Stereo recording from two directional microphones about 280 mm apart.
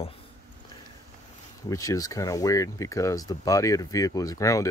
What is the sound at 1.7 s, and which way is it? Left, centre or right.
Speech, centre.